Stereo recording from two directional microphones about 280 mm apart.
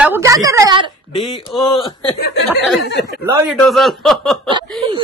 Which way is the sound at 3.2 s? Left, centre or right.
Centre.